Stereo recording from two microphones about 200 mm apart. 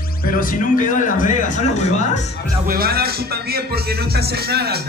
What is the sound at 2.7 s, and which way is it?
A man's voice, 50° right (ahead or behind).